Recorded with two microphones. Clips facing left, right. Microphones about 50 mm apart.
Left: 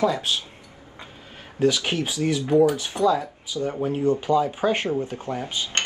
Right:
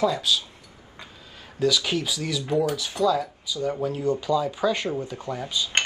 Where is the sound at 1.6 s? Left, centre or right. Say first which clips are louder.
Left 2 dB; left.